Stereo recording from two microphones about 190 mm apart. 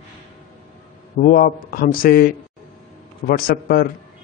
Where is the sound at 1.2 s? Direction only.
50° left (ahead or behind).